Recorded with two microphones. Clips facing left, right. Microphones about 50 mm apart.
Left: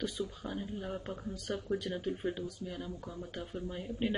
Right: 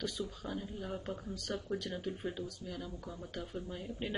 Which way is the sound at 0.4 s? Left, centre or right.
Centre.